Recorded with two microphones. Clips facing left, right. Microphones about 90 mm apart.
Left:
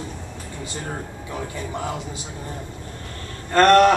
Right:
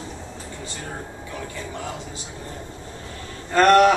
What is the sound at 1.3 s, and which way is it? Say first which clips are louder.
Speech: left 4 dB; 15° left (ahead or behind).